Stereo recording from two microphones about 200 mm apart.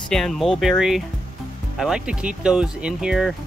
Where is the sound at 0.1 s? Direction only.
Centre (ahead or behind).